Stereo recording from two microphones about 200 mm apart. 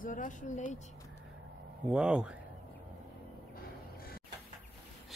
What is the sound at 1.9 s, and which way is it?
Speech, 5° right (ahead or behind).